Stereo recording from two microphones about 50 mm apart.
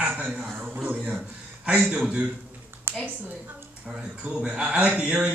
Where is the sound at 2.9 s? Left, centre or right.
Right.